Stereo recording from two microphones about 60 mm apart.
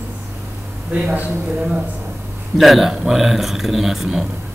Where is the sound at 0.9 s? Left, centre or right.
Right.